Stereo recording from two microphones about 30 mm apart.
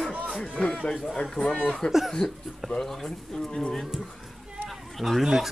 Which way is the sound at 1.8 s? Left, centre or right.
Left.